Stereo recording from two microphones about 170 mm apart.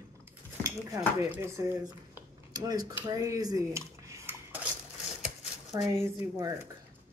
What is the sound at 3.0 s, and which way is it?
Dishes, 20° right (ahead or behind).